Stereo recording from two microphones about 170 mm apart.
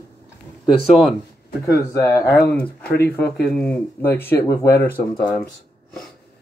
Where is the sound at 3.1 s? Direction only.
70° left (ahead or behind).